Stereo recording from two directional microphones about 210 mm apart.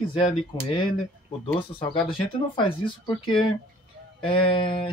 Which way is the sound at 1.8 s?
25° left (ahead or behind).